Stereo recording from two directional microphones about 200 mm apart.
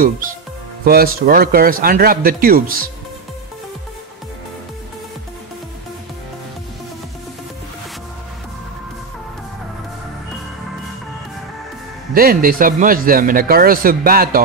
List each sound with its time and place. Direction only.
0.8 s speech: 50° right (ahead or behind)
12.1 s speech: 45° right (ahead or behind)